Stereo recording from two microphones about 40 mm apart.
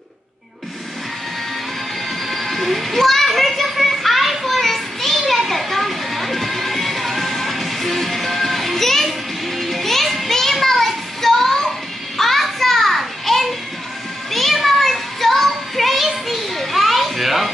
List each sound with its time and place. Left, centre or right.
2.2 s children playing: centre
9.6 s music: centre
12.2 s a sound: centre
14.3 s music: centre